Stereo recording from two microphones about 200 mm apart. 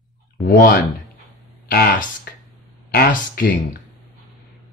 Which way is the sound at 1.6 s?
50° left (ahead or behind).